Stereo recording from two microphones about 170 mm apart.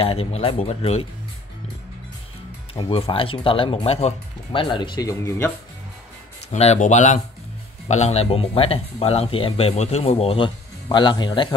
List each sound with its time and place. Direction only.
0.0 s speech: 35° left (ahead or behind)
2.7 s speech: 35° left (ahead or behind); by 5.5 s 20° left (ahead or behind)
6.5 s speech: 40° left (ahead or behind); by 11.4 s 25° left (ahead or behind)